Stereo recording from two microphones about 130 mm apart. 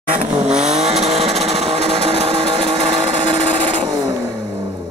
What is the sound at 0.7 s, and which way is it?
Vehicle, 55° right (ahead or behind).